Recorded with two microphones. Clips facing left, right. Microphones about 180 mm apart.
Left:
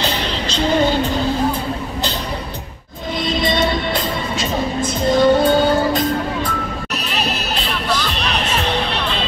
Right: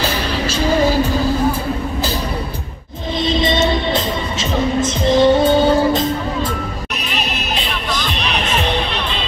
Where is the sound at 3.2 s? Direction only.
25° right (ahead or behind).